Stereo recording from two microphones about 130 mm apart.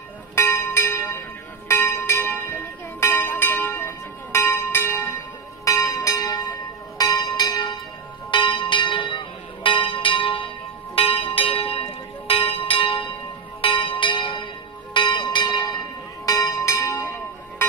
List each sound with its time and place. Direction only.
0.4 s music: 20° left (ahead or behind)
5.7 s church bell: 25° left (ahead or behind)
7.0 s music: 30° left (ahead or behind)
8.3 s church bell: 35° left (ahead or behind)
11.0 s music: 45° left (ahead or behind)
12.3 s church bell: 45° left (ahead or behind); by 17.6 s 20° left (ahead or behind)